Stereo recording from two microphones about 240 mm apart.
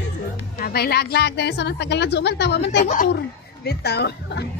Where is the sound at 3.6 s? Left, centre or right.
Left.